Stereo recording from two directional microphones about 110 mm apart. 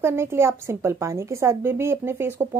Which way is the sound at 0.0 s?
25° right (ahead or behind).